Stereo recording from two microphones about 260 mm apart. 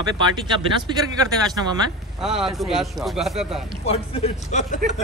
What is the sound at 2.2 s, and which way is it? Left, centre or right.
Speech, centre.